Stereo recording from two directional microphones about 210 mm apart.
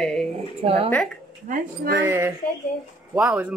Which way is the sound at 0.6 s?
25° right (ahead or behind).